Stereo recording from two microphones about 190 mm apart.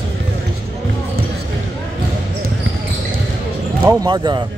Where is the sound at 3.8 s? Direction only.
20° right (ahead or behind).